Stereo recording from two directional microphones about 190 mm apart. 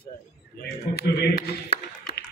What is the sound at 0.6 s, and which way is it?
Speech, 50° left (ahead or behind).